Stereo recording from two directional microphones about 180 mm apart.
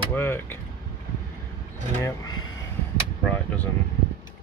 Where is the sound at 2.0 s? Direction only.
20° left (ahead or behind).